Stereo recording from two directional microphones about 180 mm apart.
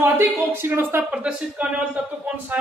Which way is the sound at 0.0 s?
10° right (ahead or behind).